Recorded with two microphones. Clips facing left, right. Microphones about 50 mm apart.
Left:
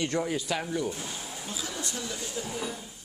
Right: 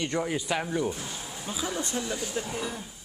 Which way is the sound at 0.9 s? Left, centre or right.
Centre.